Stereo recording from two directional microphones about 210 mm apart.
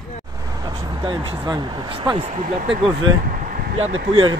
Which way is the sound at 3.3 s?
40° right (ahead or behind).